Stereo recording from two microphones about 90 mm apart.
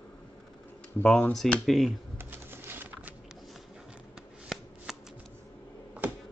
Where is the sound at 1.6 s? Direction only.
Centre (ahead or behind).